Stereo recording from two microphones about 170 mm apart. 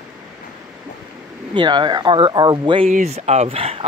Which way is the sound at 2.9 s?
40° right (ahead or behind).